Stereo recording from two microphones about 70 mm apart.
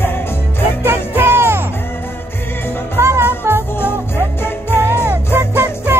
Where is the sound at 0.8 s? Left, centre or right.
Right.